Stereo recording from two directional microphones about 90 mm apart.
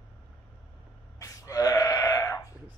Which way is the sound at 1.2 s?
35° left (ahead or behind).